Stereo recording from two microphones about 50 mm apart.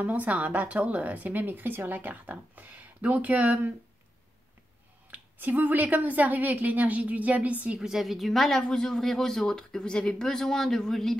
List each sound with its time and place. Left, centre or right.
0.0 s speech: right
5.1 s speech: right
7.8 s a woman's voice: centre
8.3 s speech: centre